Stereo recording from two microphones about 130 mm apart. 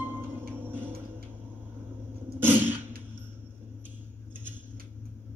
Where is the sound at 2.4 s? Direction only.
15° right (ahead or behind).